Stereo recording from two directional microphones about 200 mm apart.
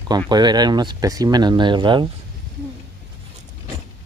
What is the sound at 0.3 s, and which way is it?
Speech, 20° right (ahead or behind).